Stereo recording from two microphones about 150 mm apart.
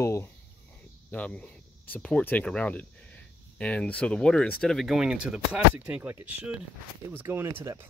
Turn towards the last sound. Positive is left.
turn(degrees=-20)  # may be behind; listen again after turning